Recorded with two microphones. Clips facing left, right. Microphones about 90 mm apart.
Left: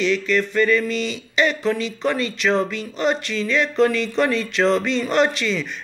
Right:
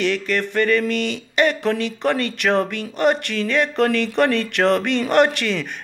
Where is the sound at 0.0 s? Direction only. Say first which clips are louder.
Left 1 dB; 55° right (ahead or behind).